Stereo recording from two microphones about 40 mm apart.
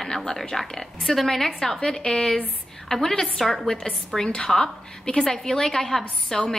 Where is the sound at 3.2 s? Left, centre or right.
Centre.